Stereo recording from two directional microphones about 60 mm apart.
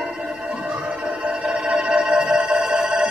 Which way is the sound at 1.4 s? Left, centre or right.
Centre.